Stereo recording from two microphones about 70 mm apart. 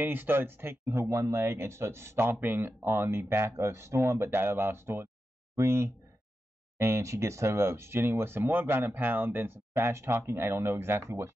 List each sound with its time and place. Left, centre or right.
0.0 s speech: right
2.3 s speech: right